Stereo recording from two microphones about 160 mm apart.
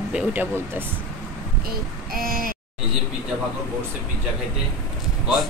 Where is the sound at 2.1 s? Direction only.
65° right (ahead or behind).